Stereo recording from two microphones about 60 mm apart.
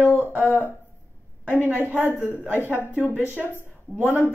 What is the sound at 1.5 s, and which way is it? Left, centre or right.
Speech, left.